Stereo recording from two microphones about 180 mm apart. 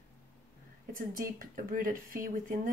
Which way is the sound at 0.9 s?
50° right (ahead or behind).